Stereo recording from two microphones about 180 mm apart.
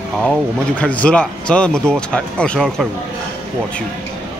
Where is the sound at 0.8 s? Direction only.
5° left (ahead or behind).